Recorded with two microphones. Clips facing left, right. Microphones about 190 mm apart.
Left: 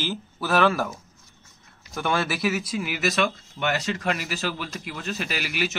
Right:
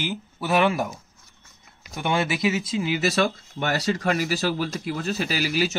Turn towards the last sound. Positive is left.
turn(degrees=-35)  # may be behind; listen again after turning